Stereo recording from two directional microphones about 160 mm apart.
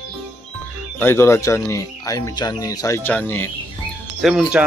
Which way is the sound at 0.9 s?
15° left (ahead or behind).